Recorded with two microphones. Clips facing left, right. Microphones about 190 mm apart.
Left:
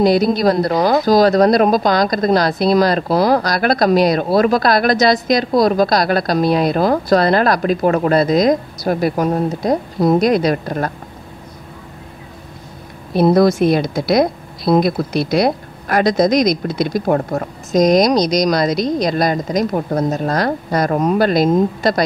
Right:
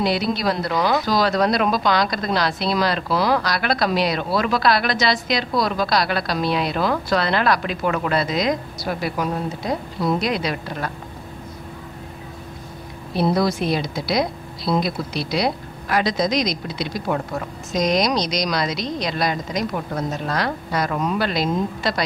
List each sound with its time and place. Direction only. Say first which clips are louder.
0.0 s speech: left 8 dB; 40° left (ahead or behind)
13.1 s speech: left 8 dB; 50° left (ahead or behind)